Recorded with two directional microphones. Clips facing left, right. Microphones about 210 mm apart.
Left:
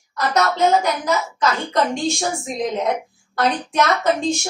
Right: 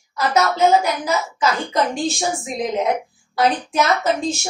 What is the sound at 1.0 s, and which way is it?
A woman's voice, 5° right (ahead or behind).